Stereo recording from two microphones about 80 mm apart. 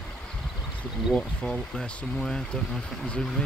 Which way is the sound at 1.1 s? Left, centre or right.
Centre.